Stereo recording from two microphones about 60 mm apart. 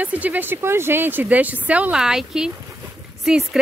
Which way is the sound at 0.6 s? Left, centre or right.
Right.